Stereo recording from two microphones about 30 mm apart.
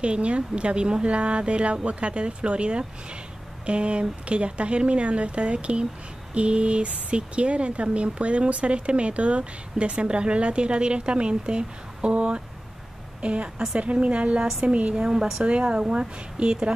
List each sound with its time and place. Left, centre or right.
0.0 s a woman's voice: right
15.0 s speech: right